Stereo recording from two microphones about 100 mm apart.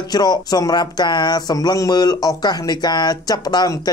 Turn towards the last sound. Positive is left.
turn(degrees=40)  # may be behind; listen again after turning